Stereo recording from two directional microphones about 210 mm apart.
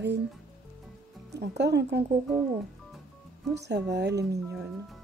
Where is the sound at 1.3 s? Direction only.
55° right (ahead or behind).